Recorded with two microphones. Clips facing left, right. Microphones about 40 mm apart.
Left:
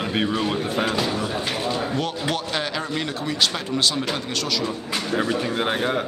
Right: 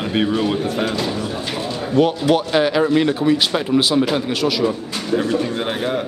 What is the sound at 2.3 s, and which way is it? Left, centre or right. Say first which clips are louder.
Speech: right 10 dB; centre.